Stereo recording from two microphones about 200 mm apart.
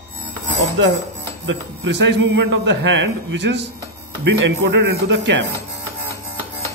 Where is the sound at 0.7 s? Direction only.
70° right (ahead or behind).